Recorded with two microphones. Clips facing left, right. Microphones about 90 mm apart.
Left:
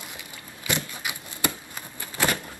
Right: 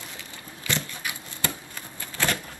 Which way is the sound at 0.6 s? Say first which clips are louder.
Left 1 dB; 15° left (ahead or behind).